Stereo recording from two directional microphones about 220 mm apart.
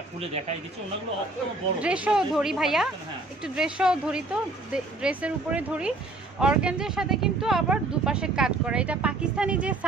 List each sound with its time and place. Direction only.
1.8 s speech: 5° right (ahead or behind)